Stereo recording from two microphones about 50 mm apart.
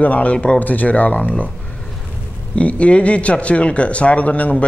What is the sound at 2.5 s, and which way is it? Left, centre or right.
Speech, left.